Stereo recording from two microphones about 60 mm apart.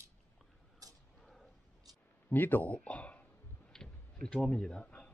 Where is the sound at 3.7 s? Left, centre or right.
Centre.